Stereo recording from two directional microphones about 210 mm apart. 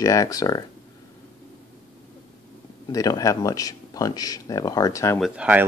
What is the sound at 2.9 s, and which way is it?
Speech, 15° left (ahead or behind).